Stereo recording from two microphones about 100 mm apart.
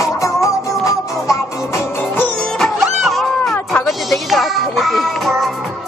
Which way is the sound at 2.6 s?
Centre (ahead or behind).